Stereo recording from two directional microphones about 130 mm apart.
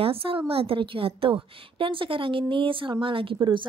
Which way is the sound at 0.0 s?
45° right (ahead or behind).